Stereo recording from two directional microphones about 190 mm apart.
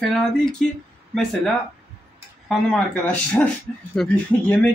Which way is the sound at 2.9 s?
10° left (ahead or behind).